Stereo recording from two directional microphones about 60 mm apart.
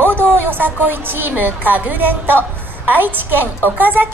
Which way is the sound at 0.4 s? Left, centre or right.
Right.